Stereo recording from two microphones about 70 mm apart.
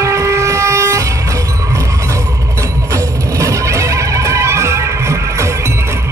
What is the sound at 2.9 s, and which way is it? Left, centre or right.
Music, right.